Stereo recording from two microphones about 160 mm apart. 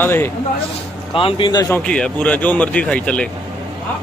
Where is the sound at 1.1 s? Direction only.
35° left (ahead or behind).